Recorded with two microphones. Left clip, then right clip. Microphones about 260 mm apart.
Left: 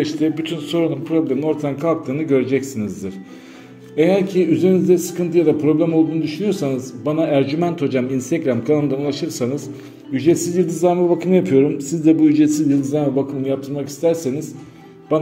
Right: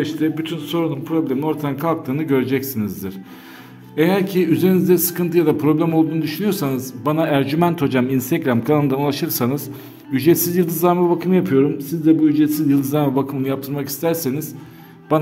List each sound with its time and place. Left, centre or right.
0.0 s a man's voice: centre